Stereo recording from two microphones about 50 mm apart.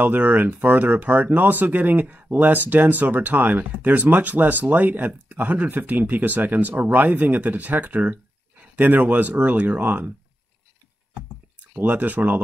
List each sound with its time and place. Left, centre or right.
0.0 s speech: right
11.7 s speech: right